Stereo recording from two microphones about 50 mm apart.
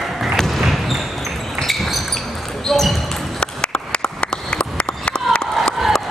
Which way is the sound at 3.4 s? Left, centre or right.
Centre.